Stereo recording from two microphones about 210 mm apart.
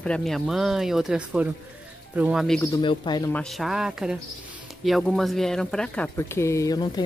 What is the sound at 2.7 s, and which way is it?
Speech, 20° left (ahead or behind).